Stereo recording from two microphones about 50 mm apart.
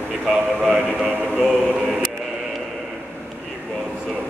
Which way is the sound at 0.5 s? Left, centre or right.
Right.